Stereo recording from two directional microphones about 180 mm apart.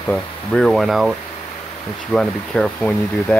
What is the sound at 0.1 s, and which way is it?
Speech, 5° left (ahead or behind).